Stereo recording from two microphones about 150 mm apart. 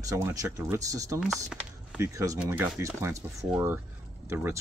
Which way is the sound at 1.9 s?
20° right (ahead or behind).